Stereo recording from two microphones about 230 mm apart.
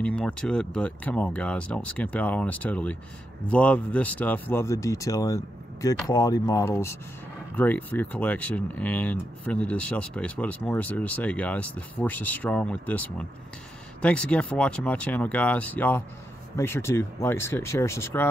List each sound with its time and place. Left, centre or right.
0.0 s speech: centre